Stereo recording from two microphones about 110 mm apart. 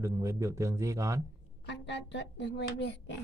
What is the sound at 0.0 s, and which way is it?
Speech, 30° right (ahead or behind).